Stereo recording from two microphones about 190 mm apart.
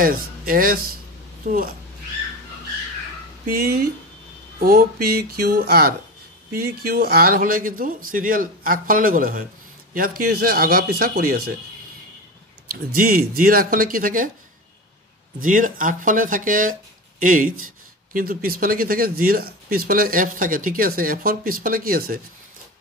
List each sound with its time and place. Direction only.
0.0 s speech: 50° right (ahead or behind)
3.4 s speech: 55° right (ahead or behind)
12.9 s speech: 50° right (ahead or behind)
15.4 s speech: 45° right (ahead or behind)